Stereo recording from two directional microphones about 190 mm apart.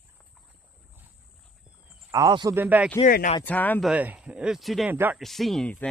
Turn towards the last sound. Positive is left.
turn(degrees=5)  # may be behind; listen again after turning